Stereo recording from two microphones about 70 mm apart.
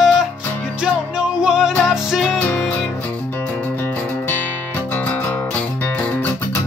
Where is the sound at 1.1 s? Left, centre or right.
Centre.